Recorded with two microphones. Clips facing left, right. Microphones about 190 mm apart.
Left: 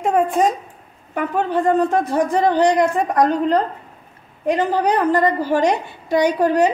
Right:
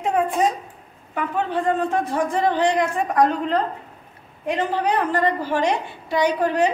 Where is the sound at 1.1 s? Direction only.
45° left (ahead or behind).